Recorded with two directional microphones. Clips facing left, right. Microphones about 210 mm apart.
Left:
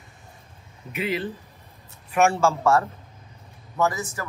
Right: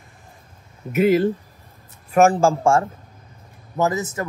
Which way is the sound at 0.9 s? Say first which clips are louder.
Right 11 dB; 45° right (ahead or behind).